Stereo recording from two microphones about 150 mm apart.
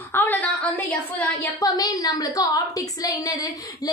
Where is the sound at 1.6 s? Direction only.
25° left (ahead or behind).